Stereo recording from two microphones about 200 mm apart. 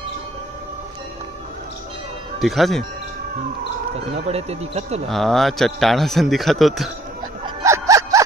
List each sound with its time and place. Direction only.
2.4 s a man's voice: centre (ahead or behind)
4.3 s speech: 30° right (ahead or behind)
5.1 s a man's voice: centre (ahead or behind)
7.6 s a sound: 15° right (ahead or behind)